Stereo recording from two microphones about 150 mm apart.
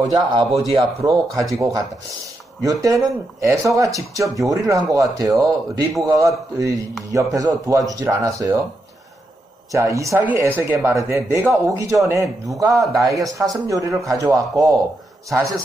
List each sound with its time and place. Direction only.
0.1 s speech: 30° right (ahead or behind)
9.7 s speech: 20° right (ahead or behind)